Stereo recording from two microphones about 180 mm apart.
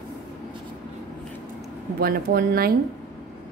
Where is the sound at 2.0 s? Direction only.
60° right (ahead or behind).